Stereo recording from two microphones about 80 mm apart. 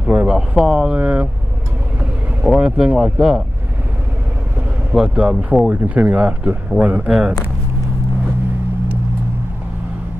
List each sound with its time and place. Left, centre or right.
0.0 s speech: centre
0.7 s speech: centre
0.9 s speech: centre
2.5 s speech: centre
4.9 s speech: centre
7.1 s speech: centre